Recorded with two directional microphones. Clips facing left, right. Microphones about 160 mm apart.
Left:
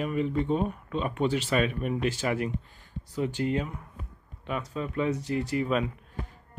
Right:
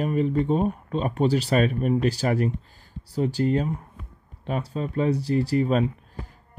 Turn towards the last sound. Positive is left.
turn(degrees=-35)  # may be behind; listen again after turning